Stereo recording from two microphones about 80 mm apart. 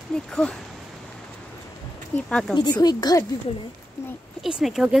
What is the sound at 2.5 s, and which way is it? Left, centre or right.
Speech, left.